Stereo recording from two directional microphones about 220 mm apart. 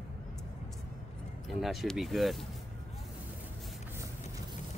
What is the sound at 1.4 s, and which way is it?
Speech, centre (ahead or behind).